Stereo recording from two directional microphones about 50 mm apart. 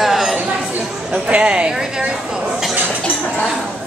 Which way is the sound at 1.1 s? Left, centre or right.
Right.